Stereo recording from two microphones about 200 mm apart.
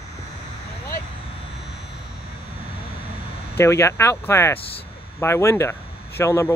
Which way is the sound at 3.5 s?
15° left (ahead or behind).